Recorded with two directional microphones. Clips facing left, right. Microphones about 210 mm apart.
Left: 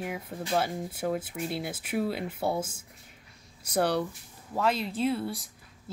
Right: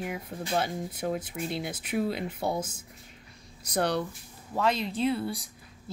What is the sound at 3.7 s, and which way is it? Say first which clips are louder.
Speech: left 1 dB; 5° left (ahead or behind).